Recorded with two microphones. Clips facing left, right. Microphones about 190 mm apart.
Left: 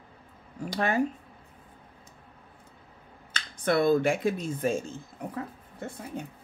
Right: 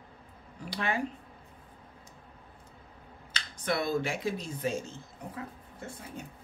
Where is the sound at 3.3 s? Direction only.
50° left (ahead or behind).